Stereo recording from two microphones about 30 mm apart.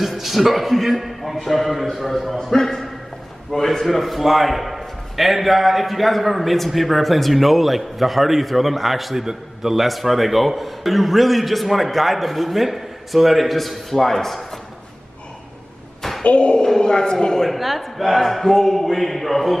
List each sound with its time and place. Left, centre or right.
0.2 s a man's voice: centre
2.3 s a man's voice: centre
9.2 s a man's voice: centre
9.8 s a man's voice: centre
16.3 s speech: left
16.8 s a man's voice: left
17.5 s a man's voice: centre